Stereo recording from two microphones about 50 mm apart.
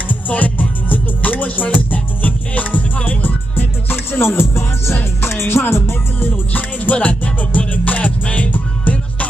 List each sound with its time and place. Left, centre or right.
0.1 s music: left